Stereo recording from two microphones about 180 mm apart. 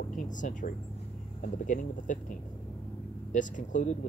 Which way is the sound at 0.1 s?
45° left (ahead or behind).